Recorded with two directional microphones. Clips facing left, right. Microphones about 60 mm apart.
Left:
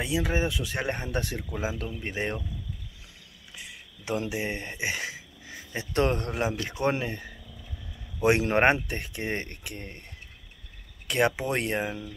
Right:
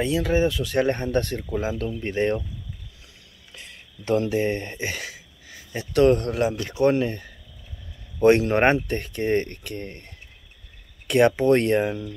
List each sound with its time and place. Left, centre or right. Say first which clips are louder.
0.0 s speech: right 6 dB; centre
3.5 s a sound: right 1 dB; centre
4.2 s speech: right 8 dB; centre
11.1 s speech: right 8 dB; centre